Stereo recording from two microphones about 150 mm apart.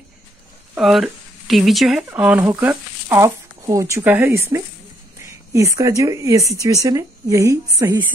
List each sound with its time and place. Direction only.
0.7 s speech: centre (ahead or behind); by 8.0 s 20° right (ahead or behind)